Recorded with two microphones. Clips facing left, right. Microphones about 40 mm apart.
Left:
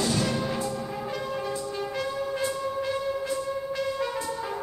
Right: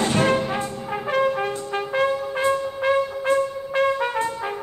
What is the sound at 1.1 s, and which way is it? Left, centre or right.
Trumpet, right.